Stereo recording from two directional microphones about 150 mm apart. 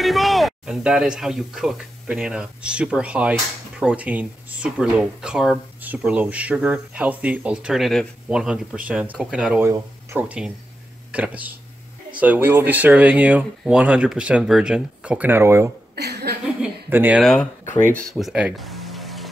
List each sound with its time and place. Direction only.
0.0 s speech: centre (ahead or behind)
9.7 s speech: 20° right (ahead or behind)
10.2 s speech: 10° right (ahead or behind)
16.0 s a woman's voice: 90° right
16.9 s speech: 10° right (ahead or behind)
17.2 s speech: 5° left (ahead or behind)
17.9 s music: centre (ahead or behind)